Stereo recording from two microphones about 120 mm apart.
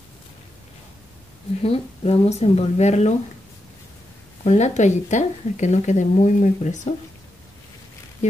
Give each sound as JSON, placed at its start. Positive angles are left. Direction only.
{"t": 1.6, "sound": "speech", "side_deg": 55}
{"t": 4.5, "sound": "speech", "side_deg": 70}